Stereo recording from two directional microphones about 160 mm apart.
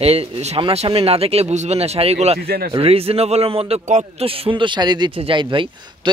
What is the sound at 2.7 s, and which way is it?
A man's voice, 35° right (ahead or behind).